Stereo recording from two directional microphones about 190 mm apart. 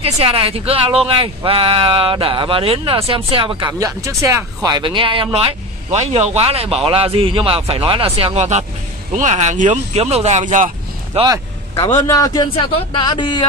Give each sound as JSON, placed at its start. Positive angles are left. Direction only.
{"t": 0.0, "sound": "speech", "side_deg": -30}
{"t": 3.6, "sound": "speech", "side_deg": -15}
{"t": 11.1, "sound": "speech", "side_deg": -20}
{"t": 11.8, "sound": "speech", "side_deg": 15}